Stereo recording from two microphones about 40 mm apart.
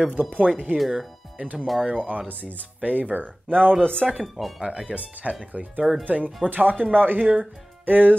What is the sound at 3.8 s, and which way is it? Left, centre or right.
Speech, left.